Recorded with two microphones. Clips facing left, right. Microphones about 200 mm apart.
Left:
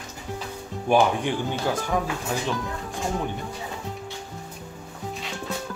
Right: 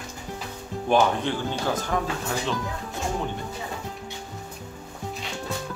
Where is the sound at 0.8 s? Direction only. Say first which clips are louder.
Left 1 dB; 10° left (ahead or behind).